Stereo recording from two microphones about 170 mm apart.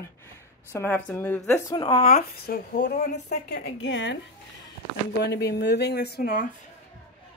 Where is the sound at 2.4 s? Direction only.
65° left (ahead or behind); by 4.2 s 90° left.